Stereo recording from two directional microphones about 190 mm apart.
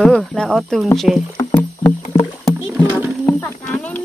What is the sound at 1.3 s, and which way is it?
Music, 10° left (ahead or behind).